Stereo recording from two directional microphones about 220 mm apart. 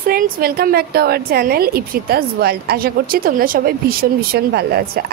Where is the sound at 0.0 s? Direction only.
40° right (ahead or behind).